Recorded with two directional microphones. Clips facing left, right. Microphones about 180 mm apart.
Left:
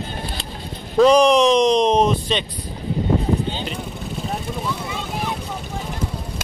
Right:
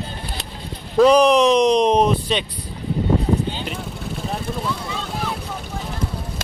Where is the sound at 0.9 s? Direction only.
5° right (ahead or behind).